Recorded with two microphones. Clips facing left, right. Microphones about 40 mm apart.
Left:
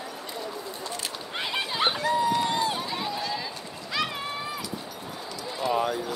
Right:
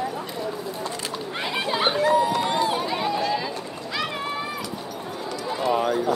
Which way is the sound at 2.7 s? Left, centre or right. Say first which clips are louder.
Right 5 dB; centre.